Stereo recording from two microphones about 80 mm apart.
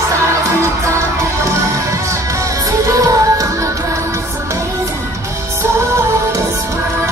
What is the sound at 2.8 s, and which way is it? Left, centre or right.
Music, right.